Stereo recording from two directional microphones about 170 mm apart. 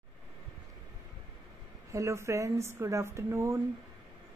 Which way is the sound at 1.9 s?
15° right (ahead or behind).